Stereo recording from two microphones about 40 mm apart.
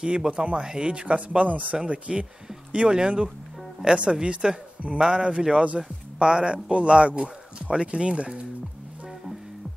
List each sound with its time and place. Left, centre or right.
0.0 s speech: right
1.9 s speech: right